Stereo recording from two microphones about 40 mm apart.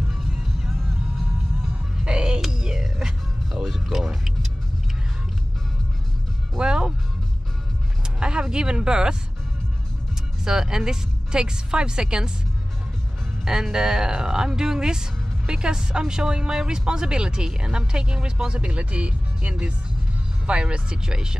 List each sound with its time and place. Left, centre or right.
0.1 s music: centre
2.0 s music: centre
6.6 s music: right
8.2 s a sound: right
10.4 s speech: centre
13.5 s speech: centre